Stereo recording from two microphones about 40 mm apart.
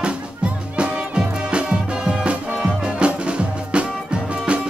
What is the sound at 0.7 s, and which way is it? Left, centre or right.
Music, right.